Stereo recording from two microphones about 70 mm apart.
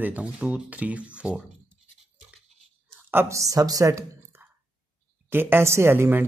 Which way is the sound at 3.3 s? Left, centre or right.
Right.